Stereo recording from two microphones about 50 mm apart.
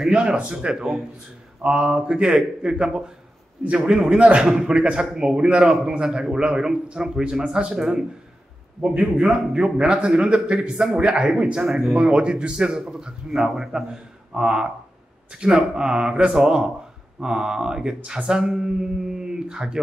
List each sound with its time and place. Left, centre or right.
0.1 s a man's voice: centre
9.2 s a man's voice: centre